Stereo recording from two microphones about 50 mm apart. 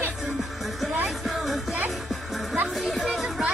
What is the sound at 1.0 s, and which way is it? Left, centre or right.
Music, centre.